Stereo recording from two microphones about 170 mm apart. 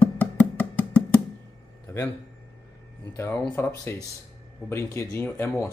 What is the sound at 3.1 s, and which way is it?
A man's voice, 15° left (ahead or behind).